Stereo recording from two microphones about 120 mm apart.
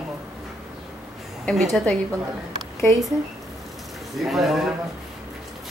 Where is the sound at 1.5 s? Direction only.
10° left (ahead or behind).